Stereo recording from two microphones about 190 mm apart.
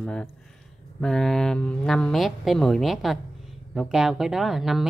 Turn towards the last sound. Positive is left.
turn(degrees=0)  # may be behind; listen again after turning